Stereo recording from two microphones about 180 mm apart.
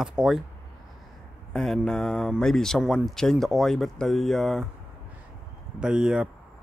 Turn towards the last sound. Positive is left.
turn(degrees=-5)  # may be behind; listen again after turning